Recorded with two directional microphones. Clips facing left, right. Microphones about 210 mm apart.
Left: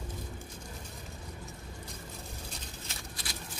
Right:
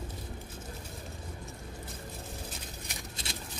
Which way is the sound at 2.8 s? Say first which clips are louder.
Right 2 dB; 25° right (ahead or behind).